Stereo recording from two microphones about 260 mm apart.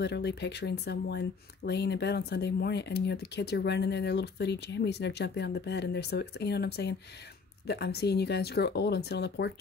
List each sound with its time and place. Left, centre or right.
0.0 s speech: left